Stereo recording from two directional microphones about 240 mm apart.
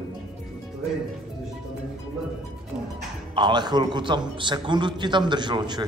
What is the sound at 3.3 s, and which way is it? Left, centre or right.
A man's voice, centre.